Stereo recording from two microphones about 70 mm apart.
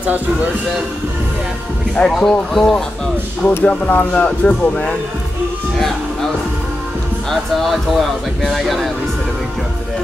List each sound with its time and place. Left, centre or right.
2.0 s speech: centre
3.6 s speech: left
5.8 s music: centre
7.2 s speech: centre